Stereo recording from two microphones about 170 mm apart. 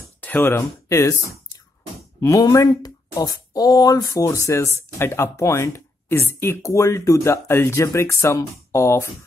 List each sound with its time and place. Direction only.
0.2 s speech: 10° left (ahead or behind)
2.1 s speech: 20° left (ahead or behind)